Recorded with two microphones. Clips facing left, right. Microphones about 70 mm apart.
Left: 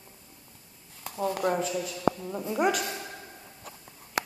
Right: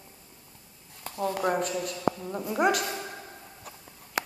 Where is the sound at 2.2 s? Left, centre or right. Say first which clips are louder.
Even; centre.